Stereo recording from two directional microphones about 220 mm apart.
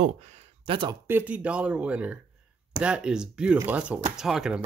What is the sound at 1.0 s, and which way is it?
Speech, 10° right (ahead or behind).